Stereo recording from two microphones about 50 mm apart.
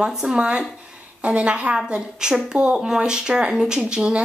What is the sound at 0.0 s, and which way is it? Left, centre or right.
A woman's voice, centre.